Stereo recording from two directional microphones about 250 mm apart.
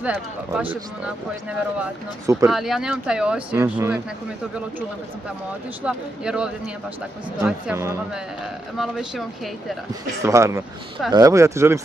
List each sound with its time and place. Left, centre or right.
0.0 s speech: centre
2.5 s speech: centre
5.9 s speech: centre
10.2 s speech: centre